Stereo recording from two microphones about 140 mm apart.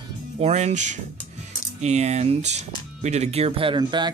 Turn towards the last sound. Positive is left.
turn(degrees=-35)  # may be behind; listen again after turning